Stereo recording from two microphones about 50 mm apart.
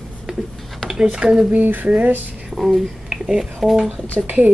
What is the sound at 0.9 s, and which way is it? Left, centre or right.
Speech, centre.